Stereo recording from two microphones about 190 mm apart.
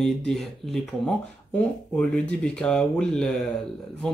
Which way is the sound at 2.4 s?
5° left (ahead or behind).